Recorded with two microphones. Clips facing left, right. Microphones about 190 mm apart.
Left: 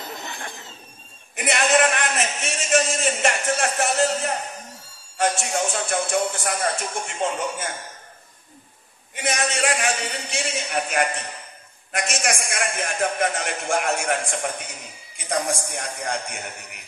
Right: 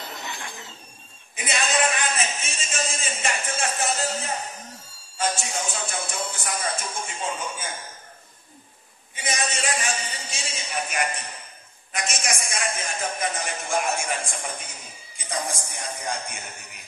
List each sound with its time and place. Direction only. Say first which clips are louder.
1.3 s a man's voice: left 6 dB; 65° left (ahead or behind)
5.1 s a man's voice: left 4 dB; 70° left (ahead or behind)
9.1 s a man's voice: left 4 dB; 65° left (ahead or behind)